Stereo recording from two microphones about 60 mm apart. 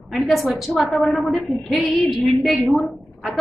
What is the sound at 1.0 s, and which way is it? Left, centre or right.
Speech, left.